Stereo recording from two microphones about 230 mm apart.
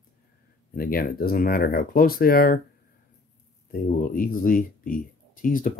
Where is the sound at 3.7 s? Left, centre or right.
Left.